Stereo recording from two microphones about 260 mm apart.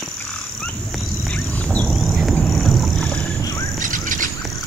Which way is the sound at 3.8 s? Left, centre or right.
Right.